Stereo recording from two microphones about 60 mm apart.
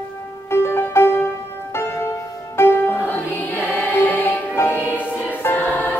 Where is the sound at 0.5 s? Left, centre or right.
Left.